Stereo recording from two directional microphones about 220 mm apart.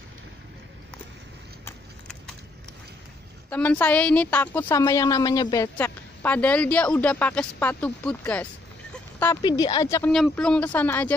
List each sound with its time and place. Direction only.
3.4 s a woman's voice: 5° left (ahead or behind)
10.1 s a woman's voice: centre (ahead or behind)